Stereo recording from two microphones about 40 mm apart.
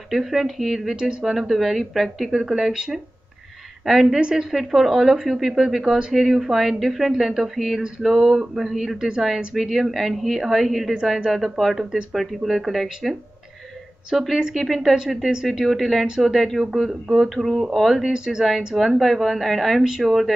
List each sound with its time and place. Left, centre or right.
0.1 s speech: centre
2.4 s speech: centre
4.2 s speech: centre
4.5 s speech: centre
9.6 s speech: centre
11.8 s speech: centre
12.1 s speech: centre
14.1 s speech: centre
18.1 s speech: centre
18.9 s speech: centre
19.8 s speech: centre
20.1 s speech: centre